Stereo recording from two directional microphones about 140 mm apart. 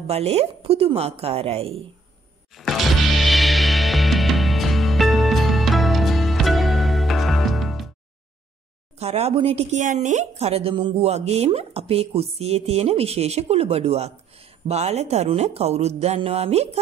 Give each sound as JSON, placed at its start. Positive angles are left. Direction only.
{"t": 0.0, "sound": "a woman's voice", "side_deg": -50}
{"t": 2.5, "sound": "music", "side_deg": 0}
{"t": 9.0, "sound": "a woman's voice", "side_deg": -50}
{"t": 11.1, "sound": "a woman's voice", "side_deg": -50}